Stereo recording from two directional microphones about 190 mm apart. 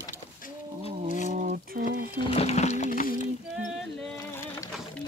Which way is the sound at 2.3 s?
35° left (ahead or behind).